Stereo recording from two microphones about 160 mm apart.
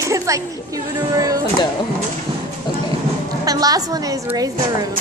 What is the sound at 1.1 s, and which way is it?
Speech, 20° right (ahead or behind).